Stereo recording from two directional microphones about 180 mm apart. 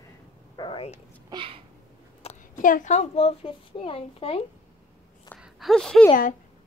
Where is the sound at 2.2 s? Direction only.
35° left (ahead or behind).